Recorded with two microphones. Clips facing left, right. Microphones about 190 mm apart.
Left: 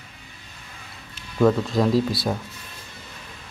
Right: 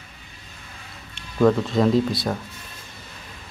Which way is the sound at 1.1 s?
Centre (ahead or behind).